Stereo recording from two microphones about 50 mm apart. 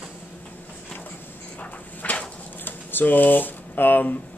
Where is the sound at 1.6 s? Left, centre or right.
Left.